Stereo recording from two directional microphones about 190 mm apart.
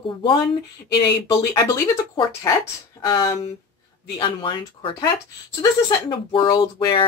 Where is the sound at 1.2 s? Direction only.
20° left (ahead or behind).